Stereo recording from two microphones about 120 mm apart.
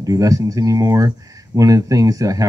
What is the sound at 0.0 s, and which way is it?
Speech, 30° right (ahead or behind).